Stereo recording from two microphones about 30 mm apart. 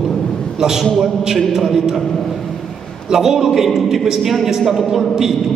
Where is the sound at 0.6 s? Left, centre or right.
Centre.